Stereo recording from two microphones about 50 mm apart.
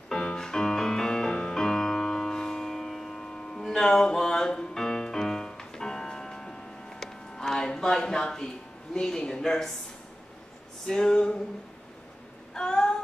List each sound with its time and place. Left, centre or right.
0.1 s music: centre
8.9 s speech: centre
10.9 s speech: centre
12.5 s a sound: centre